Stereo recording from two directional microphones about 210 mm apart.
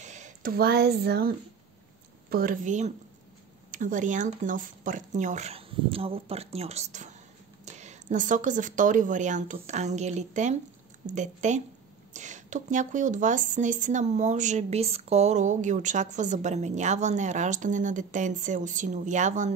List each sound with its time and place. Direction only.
0.0 s a woman's voice: 35° right (ahead or behind)